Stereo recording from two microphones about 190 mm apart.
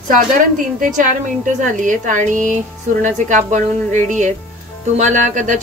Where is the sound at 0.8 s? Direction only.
45° right (ahead or behind).